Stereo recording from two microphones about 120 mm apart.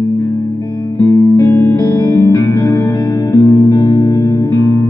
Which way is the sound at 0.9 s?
20° left (ahead or behind).